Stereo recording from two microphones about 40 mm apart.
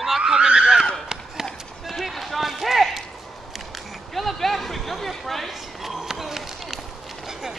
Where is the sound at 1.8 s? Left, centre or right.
Centre.